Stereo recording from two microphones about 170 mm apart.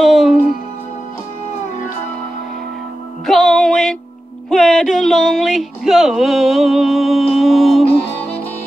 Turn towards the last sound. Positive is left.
turn(degrees=0)  # may be behind; listen again after turning